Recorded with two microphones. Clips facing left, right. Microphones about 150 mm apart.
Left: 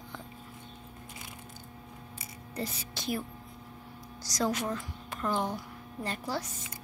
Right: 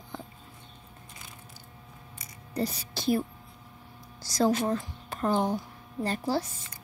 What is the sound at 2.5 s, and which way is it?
Speech, 35° right (ahead or behind).